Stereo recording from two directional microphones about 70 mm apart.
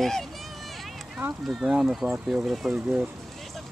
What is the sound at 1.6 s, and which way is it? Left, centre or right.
Speech, centre.